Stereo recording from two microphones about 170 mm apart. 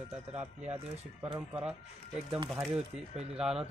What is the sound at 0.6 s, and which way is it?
Speech, 40° right (ahead or behind).